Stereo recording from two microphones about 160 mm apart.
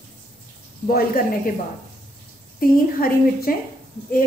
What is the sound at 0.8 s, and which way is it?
Speech, 65° left (ahead or behind).